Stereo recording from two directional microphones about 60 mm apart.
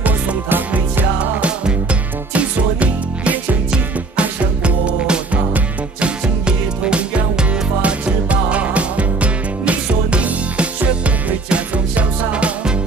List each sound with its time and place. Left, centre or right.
0.0 s music: right